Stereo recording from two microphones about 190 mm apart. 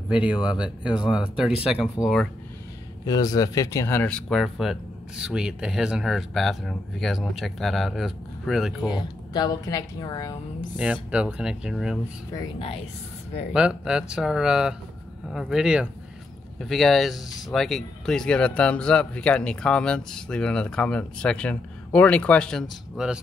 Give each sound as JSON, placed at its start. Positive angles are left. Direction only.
{"t": 0.1, "sound": "speech", "side_deg": -5}
{"t": 3.1, "sound": "speech", "side_deg": 20}
{"t": 8.8, "sound": "speech", "side_deg": 20}
{"t": 10.8, "sound": "speech", "side_deg": -5}
{"t": 12.4, "sound": "speech", "side_deg": 30}
{"t": 13.5, "sound": "speech", "side_deg": -5}